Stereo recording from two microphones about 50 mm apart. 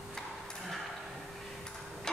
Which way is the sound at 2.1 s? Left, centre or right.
Centre.